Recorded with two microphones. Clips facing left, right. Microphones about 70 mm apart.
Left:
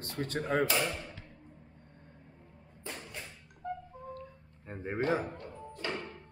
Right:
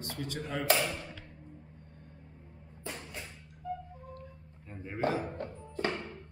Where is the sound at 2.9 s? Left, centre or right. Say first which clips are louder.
Right 1 dB; centre.